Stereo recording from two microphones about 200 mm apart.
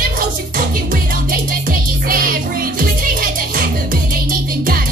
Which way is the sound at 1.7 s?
45° right (ahead or behind).